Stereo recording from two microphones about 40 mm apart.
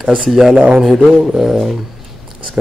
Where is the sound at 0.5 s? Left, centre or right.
Right.